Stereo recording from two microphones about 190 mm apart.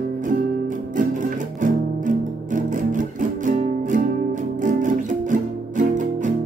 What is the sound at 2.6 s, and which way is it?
Music, 45° right (ahead or behind).